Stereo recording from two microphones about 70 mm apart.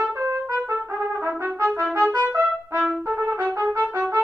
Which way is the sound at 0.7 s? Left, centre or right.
Right.